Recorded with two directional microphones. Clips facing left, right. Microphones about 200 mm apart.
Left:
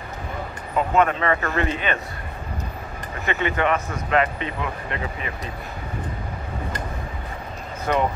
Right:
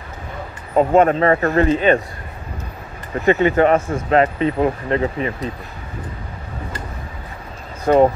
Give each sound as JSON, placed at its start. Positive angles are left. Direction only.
{"t": 0.7, "sound": "speech", "side_deg": -40}
{"t": 3.3, "sound": "speech", "side_deg": -40}
{"t": 7.9, "sound": "speech", "side_deg": -40}